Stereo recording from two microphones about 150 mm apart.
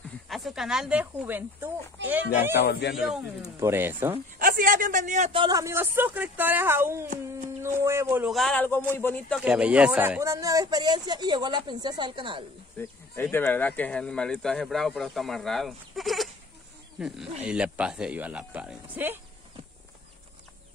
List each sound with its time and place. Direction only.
0.3 s speech: centre (ahead or behind)
3.5 s speech: 15° right (ahead or behind)
4.4 s a man's voice: 65° right (ahead or behind)
5.3 s a man's voice: 35° right (ahead or behind)
5.6 s speech: 15° right (ahead or behind)
8.3 s a man's voice: 5° left (ahead or behind)
9.4 s speech: 5° right (ahead or behind); by 12.4 s 35° right (ahead or behind)
12.7 s speech: 15° left (ahead or behind); by 16.3 s centre (ahead or behind)
17.4 s speech: 5° right (ahead or behind)